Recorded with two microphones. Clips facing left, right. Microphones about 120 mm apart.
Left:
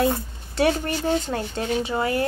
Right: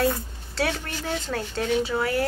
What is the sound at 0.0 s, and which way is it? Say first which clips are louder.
Speech: left 2 dB; 20° left (ahead or behind).